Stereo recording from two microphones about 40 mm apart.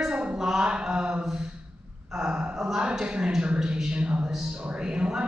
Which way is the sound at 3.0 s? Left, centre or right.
Right.